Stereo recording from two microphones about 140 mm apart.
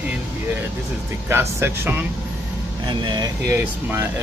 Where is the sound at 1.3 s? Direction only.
15° right (ahead or behind).